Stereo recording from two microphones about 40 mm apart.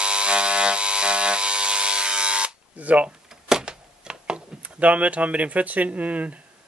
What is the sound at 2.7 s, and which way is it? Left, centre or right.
Speech, right.